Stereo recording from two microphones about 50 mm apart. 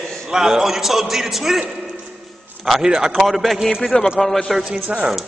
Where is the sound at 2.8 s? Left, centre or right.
Centre.